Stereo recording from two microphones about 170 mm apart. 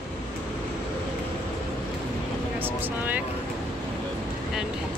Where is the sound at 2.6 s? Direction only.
10° right (ahead or behind).